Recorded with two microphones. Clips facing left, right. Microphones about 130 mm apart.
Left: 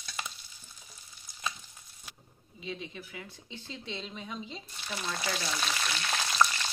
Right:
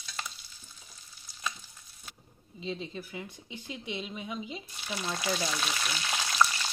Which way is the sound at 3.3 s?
15° right (ahead or behind).